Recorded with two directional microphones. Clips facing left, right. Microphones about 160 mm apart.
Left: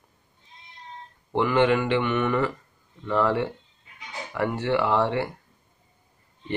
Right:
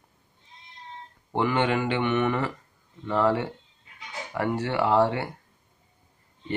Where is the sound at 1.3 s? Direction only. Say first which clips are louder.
Left 3 dB; 30° right (ahead or behind).